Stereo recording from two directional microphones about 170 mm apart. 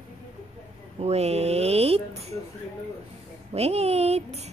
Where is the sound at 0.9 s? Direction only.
40° right (ahead or behind).